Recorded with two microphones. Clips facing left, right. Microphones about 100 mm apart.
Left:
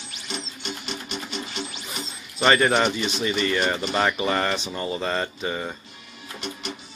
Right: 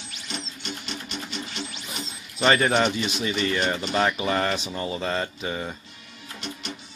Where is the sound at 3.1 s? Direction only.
10° right (ahead or behind).